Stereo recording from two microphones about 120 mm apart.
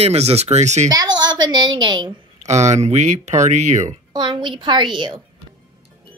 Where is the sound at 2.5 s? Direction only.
75° right (ahead or behind).